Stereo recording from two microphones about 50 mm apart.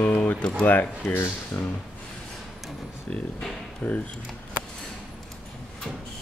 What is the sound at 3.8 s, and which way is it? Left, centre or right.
Speech, left.